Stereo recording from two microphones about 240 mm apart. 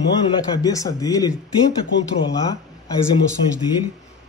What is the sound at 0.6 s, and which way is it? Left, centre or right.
Speech, centre.